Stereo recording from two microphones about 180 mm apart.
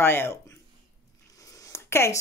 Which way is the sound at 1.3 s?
20° left (ahead or behind).